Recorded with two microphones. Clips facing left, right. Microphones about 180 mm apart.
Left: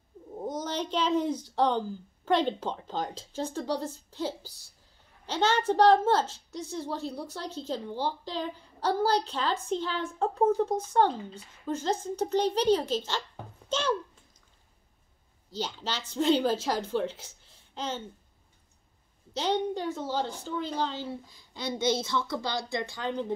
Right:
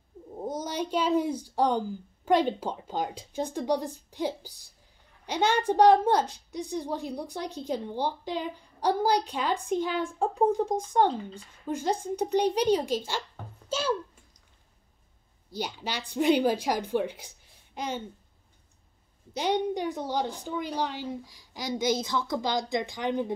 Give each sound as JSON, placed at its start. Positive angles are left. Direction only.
{"t": 0.4, "sound": "a woman's voice", "side_deg": -10}
{"t": 13.7, "sound": "a sound", "side_deg": -10}
{"t": 15.5, "sound": "a woman's voice", "side_deg": -10}
{"t": 19.3, "sound": "a woman's voice", "side_deg": -15}